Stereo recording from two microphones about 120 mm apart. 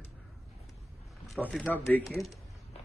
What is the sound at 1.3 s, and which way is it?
Speech, 10° left (ahead or behind).